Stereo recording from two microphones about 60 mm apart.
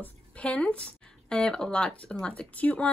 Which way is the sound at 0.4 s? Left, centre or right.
Centre.